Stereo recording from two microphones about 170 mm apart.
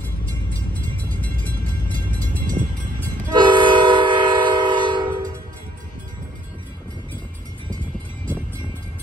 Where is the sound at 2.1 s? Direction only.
10° left (ahead or behind).